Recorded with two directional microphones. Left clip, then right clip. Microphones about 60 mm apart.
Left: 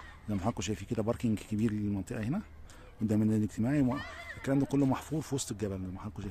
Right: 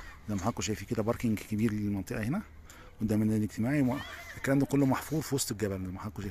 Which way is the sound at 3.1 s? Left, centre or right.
Centre.